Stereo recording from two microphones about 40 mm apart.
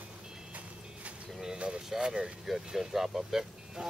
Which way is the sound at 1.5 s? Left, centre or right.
Right.